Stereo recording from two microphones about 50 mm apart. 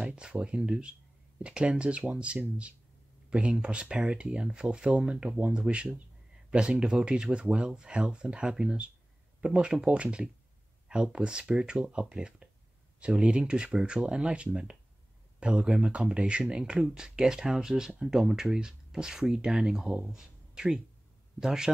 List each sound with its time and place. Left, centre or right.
0.0 s speech: right